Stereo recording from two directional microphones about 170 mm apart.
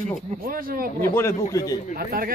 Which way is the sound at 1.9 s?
60° right (ahead or behind).